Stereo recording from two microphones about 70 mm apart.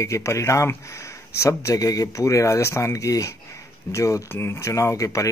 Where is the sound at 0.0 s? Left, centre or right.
Left.